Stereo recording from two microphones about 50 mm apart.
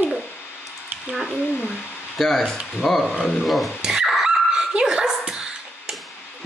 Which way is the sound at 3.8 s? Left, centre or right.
Centre.